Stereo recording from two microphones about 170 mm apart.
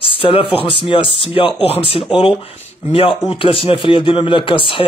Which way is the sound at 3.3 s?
30° left (ahead or behind).